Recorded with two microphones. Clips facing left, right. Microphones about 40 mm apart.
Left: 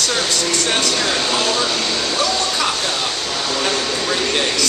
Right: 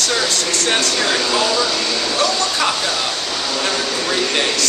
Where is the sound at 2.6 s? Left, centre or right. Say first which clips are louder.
Right 1 dB; centre.